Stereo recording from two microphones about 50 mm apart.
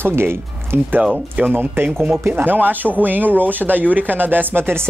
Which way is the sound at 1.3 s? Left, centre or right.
Right.